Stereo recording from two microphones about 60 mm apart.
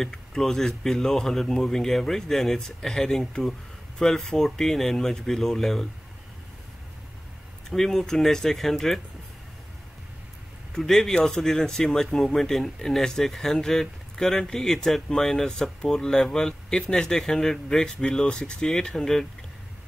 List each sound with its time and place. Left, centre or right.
0.0 s speech: centre
7.7 s speech: centre
10.7 s speech: centre